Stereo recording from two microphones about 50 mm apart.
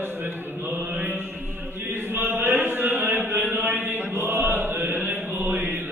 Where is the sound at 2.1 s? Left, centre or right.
Right.